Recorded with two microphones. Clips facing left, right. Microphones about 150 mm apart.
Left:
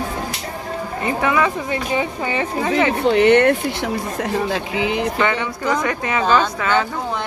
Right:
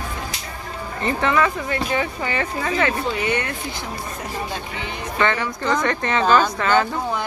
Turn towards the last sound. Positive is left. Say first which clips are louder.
# even
turn(degrees=0)  # may be behind; listen again after turning